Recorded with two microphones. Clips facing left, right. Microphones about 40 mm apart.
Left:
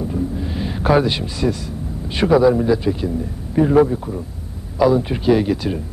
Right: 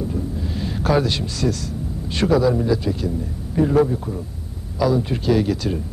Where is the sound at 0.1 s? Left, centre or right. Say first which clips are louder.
Left 3 dB; centre.